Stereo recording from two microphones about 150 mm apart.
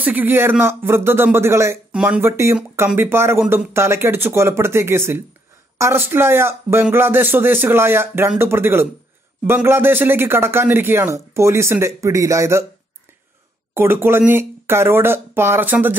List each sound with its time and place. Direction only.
0.0 s a man's voice: 10° right (ahead or behind)
13.7 s a man's voice: 15° right (ahead or behind)